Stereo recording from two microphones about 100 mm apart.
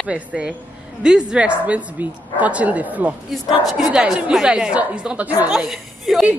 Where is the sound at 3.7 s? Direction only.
5° right (ahead or behind).